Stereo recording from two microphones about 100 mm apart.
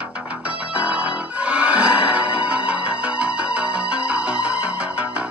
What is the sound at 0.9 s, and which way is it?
Music, 10° right (ahead or behind).